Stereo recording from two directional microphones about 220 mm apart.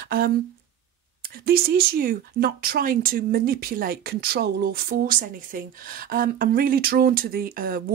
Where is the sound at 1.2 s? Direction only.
45° right (ahead or behind).